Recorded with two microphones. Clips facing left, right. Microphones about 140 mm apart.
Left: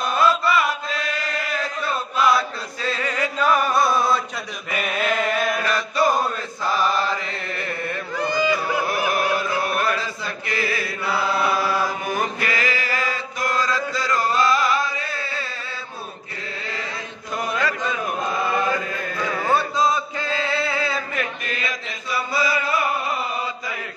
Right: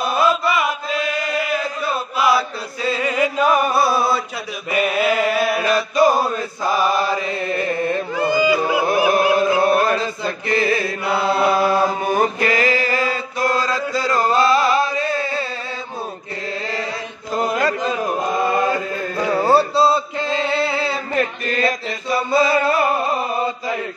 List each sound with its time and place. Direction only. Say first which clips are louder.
0.0 s chant: right 2 dB; 10° right (ahead or behind)
8.1 s a sound: right 3 dB; 10° right (ahead or behind)
8.8 s chant: right 6 dB; 25° right (ahead or behind)
17.3 s chant: right 5 dB; 35° right (ahead or behind)
22.6 s chant: right 6 dB; 40° right (ahead or behind)